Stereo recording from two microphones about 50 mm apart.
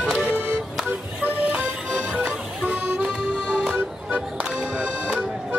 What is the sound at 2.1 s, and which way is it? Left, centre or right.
Music, right.